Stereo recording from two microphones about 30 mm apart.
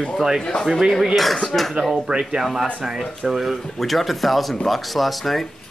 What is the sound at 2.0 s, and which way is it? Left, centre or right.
Speech, right.